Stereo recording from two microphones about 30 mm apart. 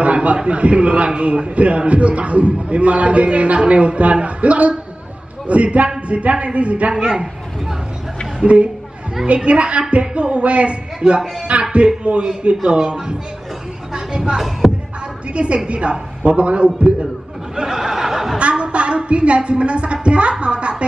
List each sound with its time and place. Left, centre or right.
0.0 s a sound: right
0.6 s a man's voice: right
8.5 s a man's voice: right
12.7 s speech: right
13.9 s a sound: right
14.6 s music: centre
15.3 s a woman's voice: right
17.6 s a sound: centre
18.4 s a woman's voice: right